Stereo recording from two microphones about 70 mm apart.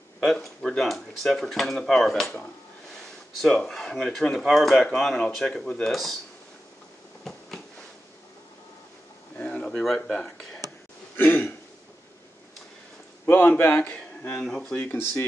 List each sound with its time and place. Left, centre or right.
0.2 s speech: centre
3.3 s speech: centre
9.4 s a sound: centre
9.9 s speech: centre
11.1 s speech: left
13.2 s speech: left
14.3 s speech: centre
14.8 s speech: left